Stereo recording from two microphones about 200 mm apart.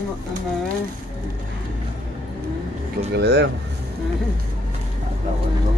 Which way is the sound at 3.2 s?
55° right (ahead or behind).